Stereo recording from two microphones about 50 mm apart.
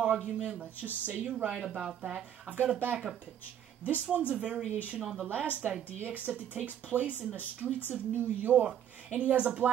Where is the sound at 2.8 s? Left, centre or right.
Right.